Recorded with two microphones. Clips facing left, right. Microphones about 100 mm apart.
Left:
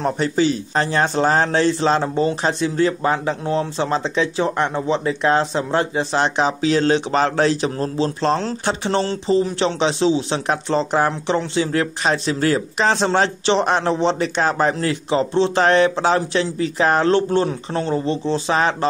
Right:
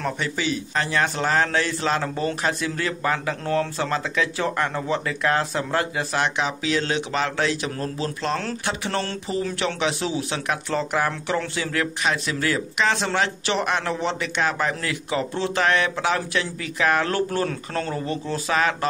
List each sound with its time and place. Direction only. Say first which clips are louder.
0.0 s speech: left 8 dB; 35° left (ahead or behind)